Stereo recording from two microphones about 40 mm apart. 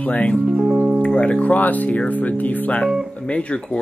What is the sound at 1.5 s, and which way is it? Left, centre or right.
Speech, left.